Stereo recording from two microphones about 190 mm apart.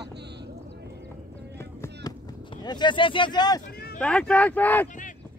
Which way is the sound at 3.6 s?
55° left (ahead or behind).